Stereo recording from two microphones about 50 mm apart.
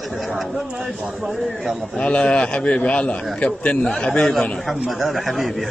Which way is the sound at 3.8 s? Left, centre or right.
Centre.